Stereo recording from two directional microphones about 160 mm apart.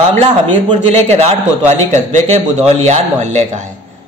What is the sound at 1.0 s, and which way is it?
A man's voice, 45° right (ahead or behind).